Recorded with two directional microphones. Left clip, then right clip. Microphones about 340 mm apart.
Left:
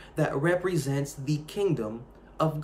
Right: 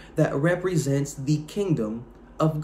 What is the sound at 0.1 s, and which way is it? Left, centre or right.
A man's voice, centre.